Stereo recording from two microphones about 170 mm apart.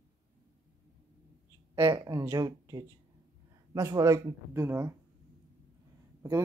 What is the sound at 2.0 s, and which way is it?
Speech, 20° right (ahead or behind).